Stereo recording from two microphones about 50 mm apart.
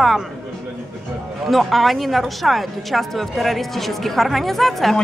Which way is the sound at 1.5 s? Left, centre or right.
Centre.